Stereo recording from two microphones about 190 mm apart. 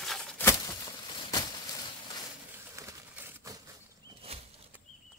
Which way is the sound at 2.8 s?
15° right (ahead or behind).